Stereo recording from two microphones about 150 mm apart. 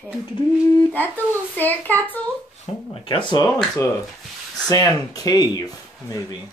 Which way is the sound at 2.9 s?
35° left (ahead or behind).